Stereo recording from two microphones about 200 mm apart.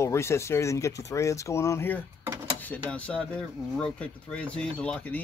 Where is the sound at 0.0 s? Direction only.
15° left (ahead or behind).